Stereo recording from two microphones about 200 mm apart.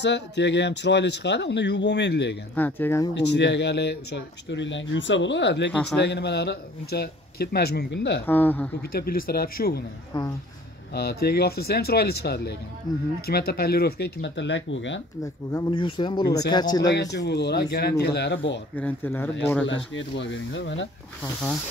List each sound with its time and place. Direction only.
0.0 s speech: 60° left (ahead or behind)
2.5 s speech: 10° left (ahead or behind)
3.2 s speech: 60° left (ahead or behind)
5.7 s speech: 5° left (ahead or behind)
5.9 s speech: 60° left (ahead or behind)
8.3 s speech: 10° left (ahead or behind)
8.8 s speech: 50° left (ahead or behind)
10.9 s speech: 50° left (ahead or behind)
15.5 s speech: 25° left (ahead or behind)
17.3 s speech: 55° left (ahead or behind)
18.8 s speech: 10° left (ahead or behind)
19.6 s speech: 70° left (ahead or behind)